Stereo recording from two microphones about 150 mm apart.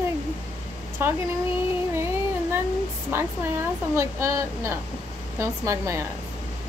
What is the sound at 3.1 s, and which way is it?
A woman's voice, 15° right (ahead or behind).